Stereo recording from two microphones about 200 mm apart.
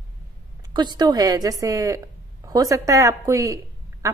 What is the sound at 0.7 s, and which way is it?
A woman's voice, 20° right (ahead or behind).